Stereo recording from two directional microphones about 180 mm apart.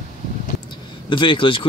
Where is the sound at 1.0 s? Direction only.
25° left (ahead or behind).